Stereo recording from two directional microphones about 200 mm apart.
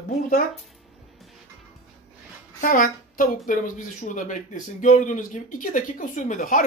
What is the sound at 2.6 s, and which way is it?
A woman's voice, 45° left (ahead or behind).